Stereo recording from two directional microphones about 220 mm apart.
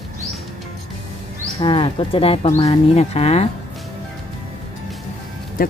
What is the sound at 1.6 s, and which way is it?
Speech, 25° left (ahead or behind).